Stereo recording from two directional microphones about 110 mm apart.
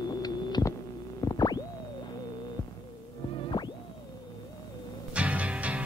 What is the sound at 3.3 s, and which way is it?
Music, 40° left (ahead or behind).